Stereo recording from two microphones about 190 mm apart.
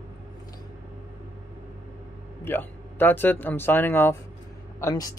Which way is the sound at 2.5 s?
10° left (ahead or behind).